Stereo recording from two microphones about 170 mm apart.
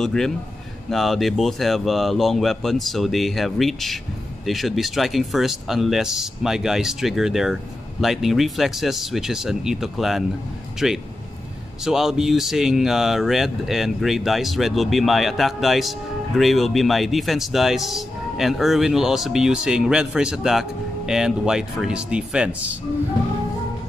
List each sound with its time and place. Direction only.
0.0 s speech: 5° left (ahead or behind)